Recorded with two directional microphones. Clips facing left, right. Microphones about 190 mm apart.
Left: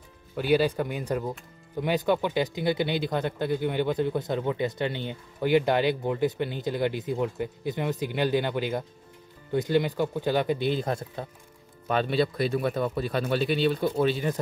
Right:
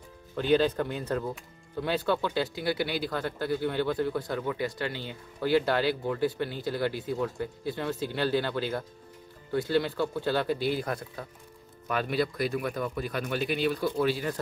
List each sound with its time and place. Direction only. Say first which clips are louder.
0.4 s speech: left 1 dB; 10° left (ahead or behind)